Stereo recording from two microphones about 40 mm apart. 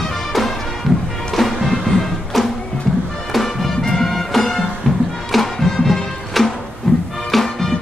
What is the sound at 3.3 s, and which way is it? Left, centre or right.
Music, centre.